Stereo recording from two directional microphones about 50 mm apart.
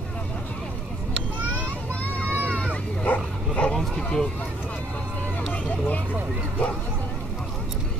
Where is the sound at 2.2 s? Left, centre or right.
Right.